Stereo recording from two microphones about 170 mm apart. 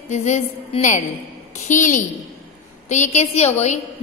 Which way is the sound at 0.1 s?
45° left (ahead or behind).